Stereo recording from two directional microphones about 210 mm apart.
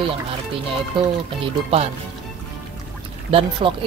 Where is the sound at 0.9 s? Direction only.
25° right (ahead or behind).